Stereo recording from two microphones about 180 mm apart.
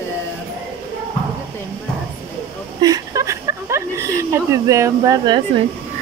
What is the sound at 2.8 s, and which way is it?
Speech, 20° right (ahead or behind).